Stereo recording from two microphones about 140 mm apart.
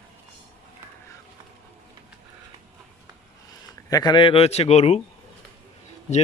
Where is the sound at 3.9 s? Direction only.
30° left (ahead or behind); by 5.0 s 50° left (ahead or behind).